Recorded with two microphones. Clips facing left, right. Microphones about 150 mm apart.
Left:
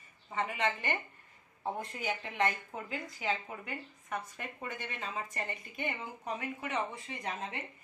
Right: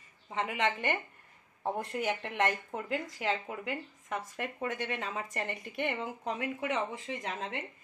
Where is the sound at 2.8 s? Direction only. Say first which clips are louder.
Right 3 dB; 90° right.